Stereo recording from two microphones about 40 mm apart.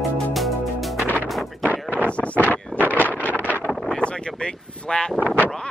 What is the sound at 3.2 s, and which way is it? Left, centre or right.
Wind noise, left.